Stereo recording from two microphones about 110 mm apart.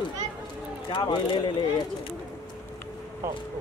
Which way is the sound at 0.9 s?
45° left (ahead or behind).